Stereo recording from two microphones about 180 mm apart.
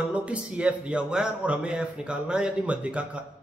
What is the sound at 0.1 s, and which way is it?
A man's voice, 5° right (ahead or behind).